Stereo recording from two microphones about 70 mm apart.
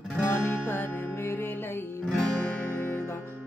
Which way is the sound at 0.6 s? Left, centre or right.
Left.